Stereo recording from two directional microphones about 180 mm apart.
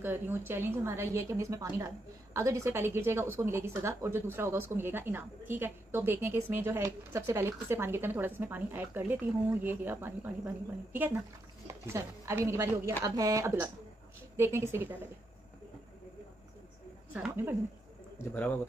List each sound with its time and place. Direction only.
0.0 s a woman's voice: 10° right (ahead or behind)
17.1 s a woman's voice: 10° right (ahead or behind)